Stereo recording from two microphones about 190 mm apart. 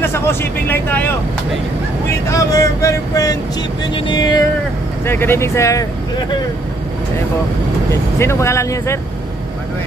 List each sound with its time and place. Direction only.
0.0 s speech: 10° left (ahead or behind)
2.3 s speech: 15° left (ahead or behind)
3.9 s music: 20° left (ahead or behind)
5.0 s speech: 10° left (ahead or behind)
7.9 s speech: 15° left (ahead or behind)